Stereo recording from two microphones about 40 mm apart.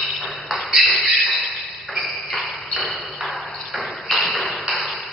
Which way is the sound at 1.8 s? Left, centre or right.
Centre.